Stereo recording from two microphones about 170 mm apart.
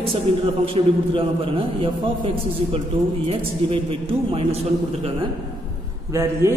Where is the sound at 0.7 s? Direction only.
30° right (ahead or behind).